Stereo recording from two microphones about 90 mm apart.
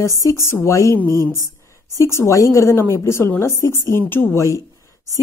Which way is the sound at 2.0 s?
30° left (ahead or behind).